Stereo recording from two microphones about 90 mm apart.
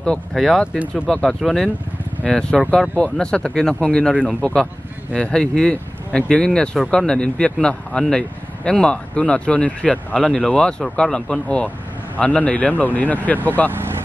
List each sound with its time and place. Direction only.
0.0 s speech: 5° left (ahead or behind)
5.1 s speech: 10° left (ahead or behind)